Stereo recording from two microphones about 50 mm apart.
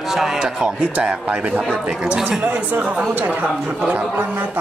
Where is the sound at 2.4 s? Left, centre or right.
Right.